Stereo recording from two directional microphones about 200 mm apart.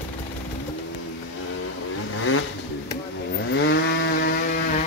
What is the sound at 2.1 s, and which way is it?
Vehicle, 90° left.